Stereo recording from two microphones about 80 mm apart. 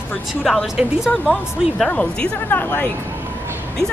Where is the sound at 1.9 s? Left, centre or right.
Centre.